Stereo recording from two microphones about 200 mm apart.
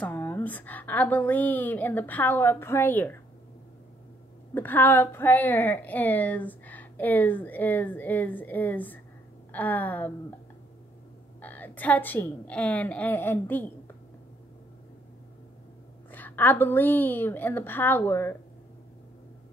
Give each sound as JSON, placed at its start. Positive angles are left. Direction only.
{"t": 0.0, "sound": "a woman's voice", "side_deg": 10}
{"t": 4.6, "sound": "a woman's voice", "side_deg": 10}
{"t": 11.4, "sound": "a woman's voice", "side_deg": 10}
{"t": 16.1, "sound": "a woman's voice", "side_deg": 10}